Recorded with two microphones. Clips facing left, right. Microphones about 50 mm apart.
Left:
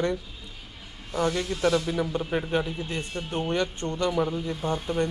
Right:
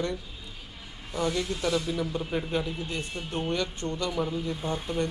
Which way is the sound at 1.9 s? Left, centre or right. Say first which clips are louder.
Left 3 dB; left.